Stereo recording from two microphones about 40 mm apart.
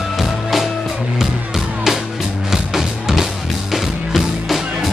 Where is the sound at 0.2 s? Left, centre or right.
Centre.